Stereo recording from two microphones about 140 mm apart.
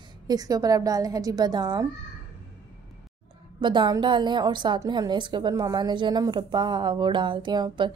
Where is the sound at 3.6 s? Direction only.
35° right (ahead or behind).